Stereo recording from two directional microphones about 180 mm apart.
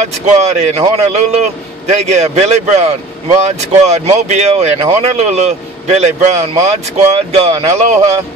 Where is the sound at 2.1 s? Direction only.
40° right (ahead or behind).